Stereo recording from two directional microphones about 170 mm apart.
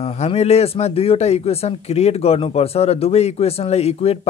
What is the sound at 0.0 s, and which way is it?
Speech, 40° left (ahead or behind).